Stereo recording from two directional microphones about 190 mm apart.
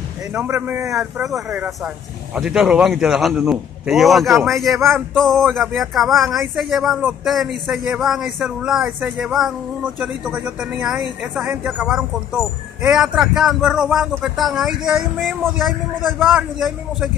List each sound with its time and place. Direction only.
0.3 s speech: 10° right (ahead or behind)